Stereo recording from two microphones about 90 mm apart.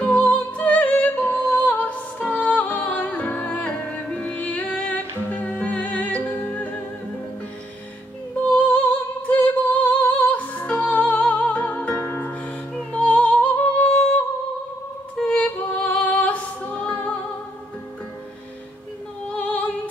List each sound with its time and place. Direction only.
0.0 s music: 15° left (ahead or behind)
9.3 s music: 15° left (ahead or behind)
15.1 s music: 10° left (ahead or behind)
19.3 s opera: 15° left (ahead or behind)